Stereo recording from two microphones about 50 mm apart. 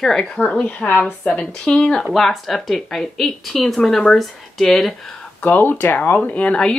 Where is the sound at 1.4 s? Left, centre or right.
Centre.